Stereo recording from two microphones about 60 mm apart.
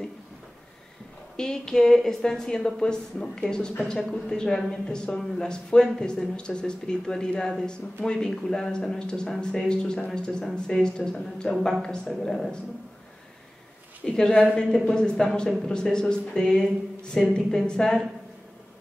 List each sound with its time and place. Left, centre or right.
1.3 s a woman's voice: centre
14.0 s a woman's voice: centre